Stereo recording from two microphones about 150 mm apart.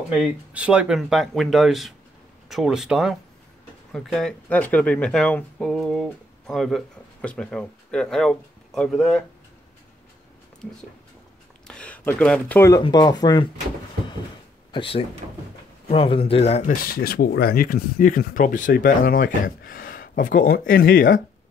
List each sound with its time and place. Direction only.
0.1 s speech: 5° right (ahead or behind)
11.6 s speech: 5° left (ahead or behind)
12.8 s speech: 30° left (ahead or behind)
14.7 s speech: 35° left (ahead or behind)
16.8 s speech: 90° left